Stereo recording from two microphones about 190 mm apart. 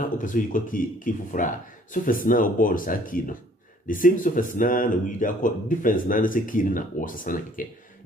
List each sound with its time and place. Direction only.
0.2 s speech: 45° left (ahead or behind)